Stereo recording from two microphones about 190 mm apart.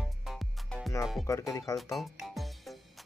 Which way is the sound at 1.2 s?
15° left (ahead or behind).